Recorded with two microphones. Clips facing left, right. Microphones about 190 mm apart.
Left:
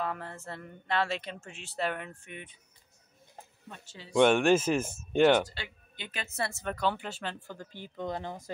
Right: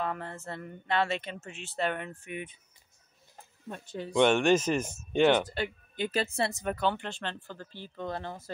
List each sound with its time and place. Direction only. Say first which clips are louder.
0.0 s a woman's voice: right 1 dB; centre (ahead or behind)
3.7 s speech: right 11 dB; 60° right (ahead or behind)
4.1 s speech: left 1 dB; 5° left (ahead or behind)
5.5 s a woman's voice: right 10 dB; 45° right (ahead or behind); by 6.5 s 30° right (ahead or behind)
6.5 s speech: right 1 dB; 10° right (ahead or behind); by 8.5 s 15° left (ahead or behind)